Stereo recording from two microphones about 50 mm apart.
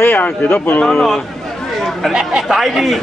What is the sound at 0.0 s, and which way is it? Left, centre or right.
Speech, left.